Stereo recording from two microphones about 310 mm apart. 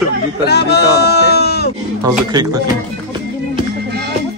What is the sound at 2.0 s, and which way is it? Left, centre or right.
Speech, centre.